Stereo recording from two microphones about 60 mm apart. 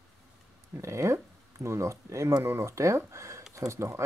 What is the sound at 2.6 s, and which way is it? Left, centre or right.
Speech, right.